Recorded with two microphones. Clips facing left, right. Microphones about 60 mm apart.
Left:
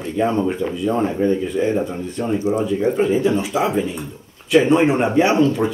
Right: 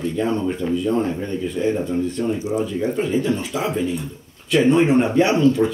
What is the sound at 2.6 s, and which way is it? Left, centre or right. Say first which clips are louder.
Speech: left 4 dB; centre.